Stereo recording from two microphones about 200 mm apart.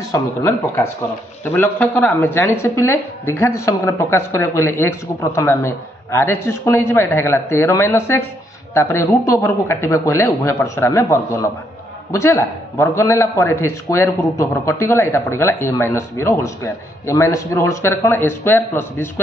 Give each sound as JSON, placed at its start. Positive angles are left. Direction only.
{"t": 0.1, "sound": "a man's voice", "side_deg": 15}